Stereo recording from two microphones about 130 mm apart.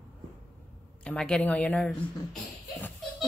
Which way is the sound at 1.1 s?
5° left (ahead or behind).